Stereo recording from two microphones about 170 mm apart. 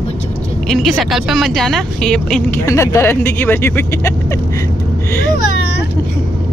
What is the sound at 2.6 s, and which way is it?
Speech, 20° left (ahead or behind).